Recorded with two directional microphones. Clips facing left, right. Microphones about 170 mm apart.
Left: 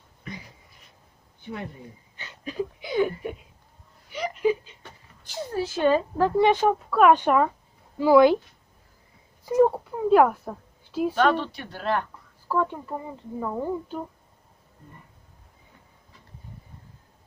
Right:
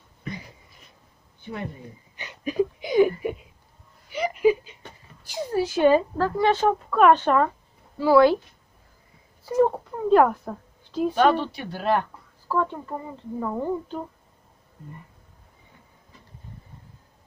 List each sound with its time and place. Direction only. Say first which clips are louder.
2.1 s a sound: right 7 dB; 15° right (ahead or behind)
5.2 s a woman's voice: right 4 dB; 10° right (ahead or behind)
6.1 s speech: left 2 dB; 20° left (ahead or behind)
9.4 s speech: left 1 dB; 10° left (ahead or behind)
11.1 s speech: right 3 dB; 10° right (ahead or behind)
12.4 s speech: even; 10° left (ahead or behind)